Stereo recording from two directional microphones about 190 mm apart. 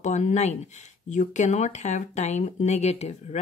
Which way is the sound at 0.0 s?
35° left (ahead or behind).